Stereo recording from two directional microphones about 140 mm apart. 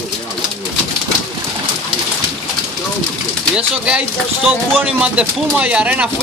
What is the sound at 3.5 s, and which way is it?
Speech, 5° right (ahead or behind).